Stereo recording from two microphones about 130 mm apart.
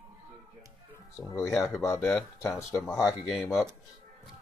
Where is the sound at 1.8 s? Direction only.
20° left (ahead or behind).